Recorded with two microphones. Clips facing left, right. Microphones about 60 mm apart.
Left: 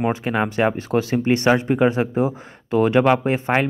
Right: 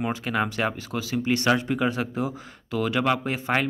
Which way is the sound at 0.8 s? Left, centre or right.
Left.